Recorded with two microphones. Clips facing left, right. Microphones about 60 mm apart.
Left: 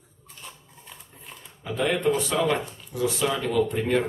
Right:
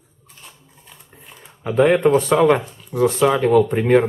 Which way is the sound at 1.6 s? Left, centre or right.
Right.